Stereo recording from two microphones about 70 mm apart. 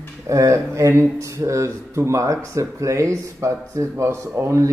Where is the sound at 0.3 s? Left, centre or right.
Right.